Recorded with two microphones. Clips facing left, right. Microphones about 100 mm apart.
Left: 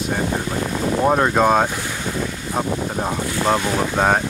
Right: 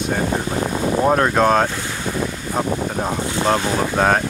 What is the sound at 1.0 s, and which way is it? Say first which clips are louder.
Speech: even; centre (ahead or behind).